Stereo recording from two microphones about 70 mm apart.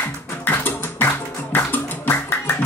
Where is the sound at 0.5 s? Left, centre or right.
Left.